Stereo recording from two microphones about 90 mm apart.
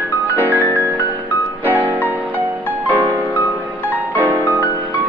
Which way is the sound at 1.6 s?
20° right (ahead or behind).